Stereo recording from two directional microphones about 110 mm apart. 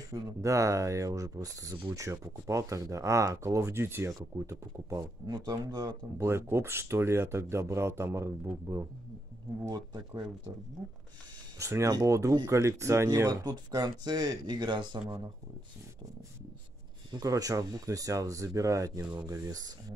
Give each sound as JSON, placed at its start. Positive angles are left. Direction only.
{"t": 0.1, "sound": "speech", "side_deg": -30}
{"t": 6.2, "sound": "speech", "side_deg": -25}
{"t": 9.7, "sound": "speech", "side_deg": -40}
{"t": 11.5, "sound": "speech", "side_deg": -30}
{"t": 17.1, "sound": "speech", "side_deg": -35}